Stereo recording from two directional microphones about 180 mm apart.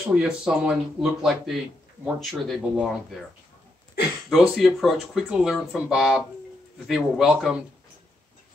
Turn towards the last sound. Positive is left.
turn(degrees=-5)  # may be behind; listen again after turning